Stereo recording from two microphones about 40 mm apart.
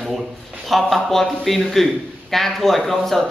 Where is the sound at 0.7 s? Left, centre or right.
Centre.